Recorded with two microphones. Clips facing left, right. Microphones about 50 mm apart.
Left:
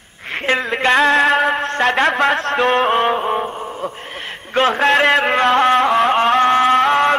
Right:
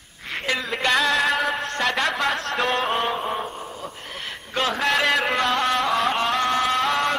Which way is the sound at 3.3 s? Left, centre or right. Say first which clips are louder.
Left 8 dB; left.